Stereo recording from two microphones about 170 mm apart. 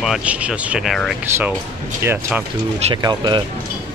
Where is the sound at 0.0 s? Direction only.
5° right (ahead or behind).